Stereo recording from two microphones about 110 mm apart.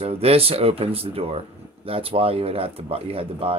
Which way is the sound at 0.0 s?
65° right (ahead or behind).